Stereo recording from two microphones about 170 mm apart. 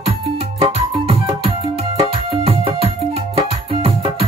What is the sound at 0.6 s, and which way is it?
Music, 30° right (ahead or behind).